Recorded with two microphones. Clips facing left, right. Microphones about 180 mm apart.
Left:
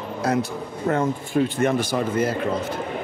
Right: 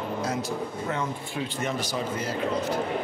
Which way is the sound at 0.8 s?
50° left (ahead or behind).